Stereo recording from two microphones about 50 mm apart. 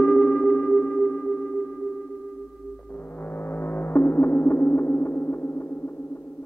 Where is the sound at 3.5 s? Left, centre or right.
Left.